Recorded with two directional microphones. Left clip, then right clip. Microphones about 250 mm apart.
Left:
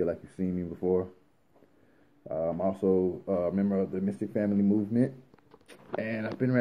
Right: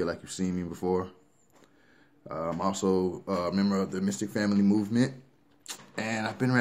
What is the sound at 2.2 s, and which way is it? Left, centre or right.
Speech, centre.